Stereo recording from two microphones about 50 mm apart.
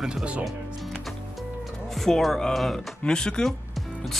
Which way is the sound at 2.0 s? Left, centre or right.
Centre.